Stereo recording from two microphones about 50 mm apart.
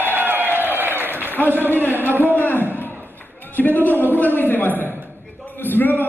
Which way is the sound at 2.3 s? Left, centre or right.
Left.